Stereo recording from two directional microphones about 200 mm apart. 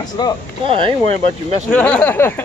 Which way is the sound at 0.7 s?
25° right (ahead or behind).